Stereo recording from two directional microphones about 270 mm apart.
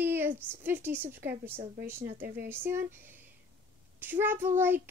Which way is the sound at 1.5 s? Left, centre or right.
Right.